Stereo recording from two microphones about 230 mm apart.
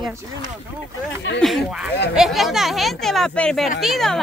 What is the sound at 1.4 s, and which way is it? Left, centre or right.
Speech, centre.